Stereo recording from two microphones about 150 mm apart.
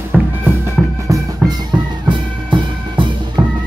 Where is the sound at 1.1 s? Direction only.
30° right (ahead or behind).